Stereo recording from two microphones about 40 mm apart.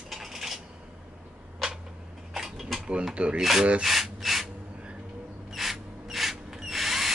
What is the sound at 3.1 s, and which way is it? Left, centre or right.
Speech, right.